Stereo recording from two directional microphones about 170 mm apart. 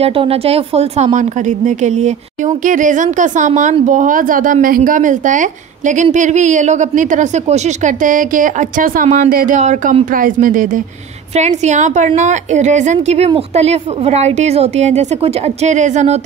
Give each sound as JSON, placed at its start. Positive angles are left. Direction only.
{"t": 0.0, "sound": "a woman's voice", "side_deg": -35}